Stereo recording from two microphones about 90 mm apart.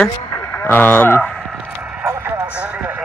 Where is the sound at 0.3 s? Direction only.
30° left (ahead or behind).